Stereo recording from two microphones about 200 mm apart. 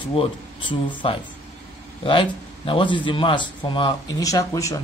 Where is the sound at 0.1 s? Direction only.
25° left (ahead or behind).